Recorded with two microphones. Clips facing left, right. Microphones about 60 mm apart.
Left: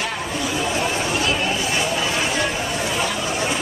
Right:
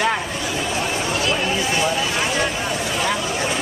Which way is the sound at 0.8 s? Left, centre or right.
Left.